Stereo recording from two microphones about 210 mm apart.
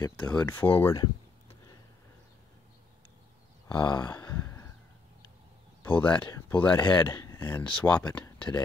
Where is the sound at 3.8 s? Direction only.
20° left (ahead or behind).